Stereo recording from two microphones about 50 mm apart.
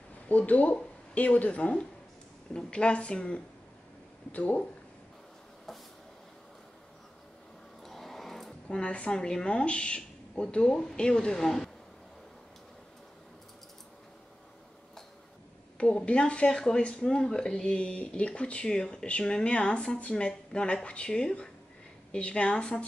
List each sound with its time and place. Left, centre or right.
0.3 s speech: left
5.7 s vehicle: centre
7.8 s speech: centre
15.8 s speech: left